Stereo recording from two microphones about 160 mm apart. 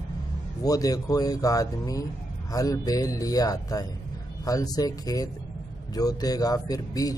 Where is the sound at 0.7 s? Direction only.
20° left (ahead or behind).